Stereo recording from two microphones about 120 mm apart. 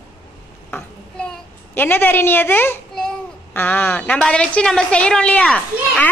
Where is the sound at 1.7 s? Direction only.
15° left (ahead or behind).